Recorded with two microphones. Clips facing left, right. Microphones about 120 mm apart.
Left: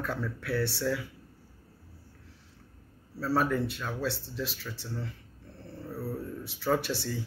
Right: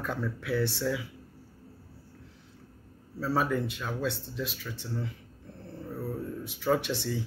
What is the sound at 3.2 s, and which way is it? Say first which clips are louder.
Speech: left 1 dB; 10° right (ahead or behind).